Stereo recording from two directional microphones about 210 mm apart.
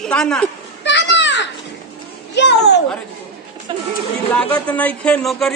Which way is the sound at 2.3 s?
55° left (ahead or behind).